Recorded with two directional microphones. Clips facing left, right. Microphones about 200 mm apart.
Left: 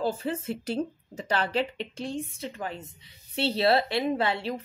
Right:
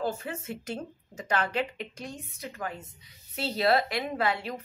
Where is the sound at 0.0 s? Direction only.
30° left (ahead or behind).